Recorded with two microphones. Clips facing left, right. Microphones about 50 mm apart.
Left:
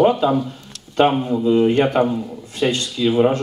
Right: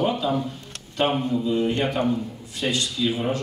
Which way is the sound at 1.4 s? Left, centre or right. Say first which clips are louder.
Left 8 dB; left.